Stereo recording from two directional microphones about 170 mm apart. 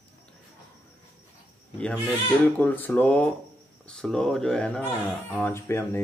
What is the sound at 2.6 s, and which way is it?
Speech, 10° left (ahead or behind).